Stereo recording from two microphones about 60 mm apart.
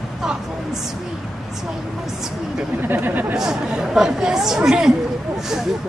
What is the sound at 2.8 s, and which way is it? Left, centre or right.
Speech, right.